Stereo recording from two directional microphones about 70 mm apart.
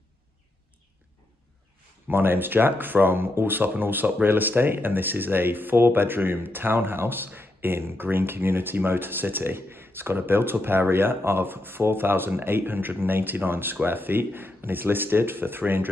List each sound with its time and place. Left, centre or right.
2.0 s speech: right